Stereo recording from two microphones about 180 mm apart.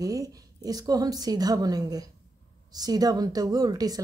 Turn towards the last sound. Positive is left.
turn(degrees=-20)  # may be behind; listen again after turning